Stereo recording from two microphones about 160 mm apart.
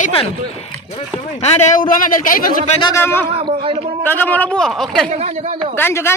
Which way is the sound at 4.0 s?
10° left (ahead or behind).